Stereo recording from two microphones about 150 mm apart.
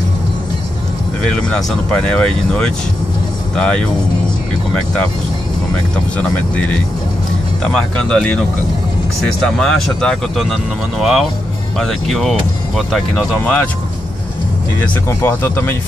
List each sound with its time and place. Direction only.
1.2 s speech: 5° left (ahead or behind)
6.1 s speech: 10° left (ahead or behind)
9.6 s speech: 5° left (ahead or behind)
13.4 s speech: 15° left (ahead or behind)
15.0 s speech: 15° left (ahead or behind)